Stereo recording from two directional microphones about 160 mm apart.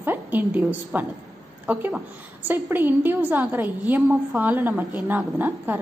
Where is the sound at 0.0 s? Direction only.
10° right (ahead or behind).